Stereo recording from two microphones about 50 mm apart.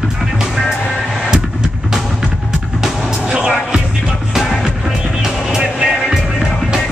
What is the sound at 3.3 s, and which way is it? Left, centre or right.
Music, centre.